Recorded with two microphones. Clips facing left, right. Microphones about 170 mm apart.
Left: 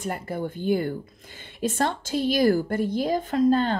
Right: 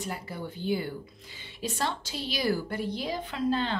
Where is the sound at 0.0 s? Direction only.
50° left (ahead or behind).